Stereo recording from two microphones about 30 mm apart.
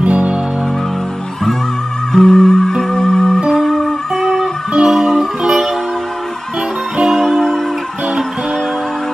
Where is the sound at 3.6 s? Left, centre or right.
Centre.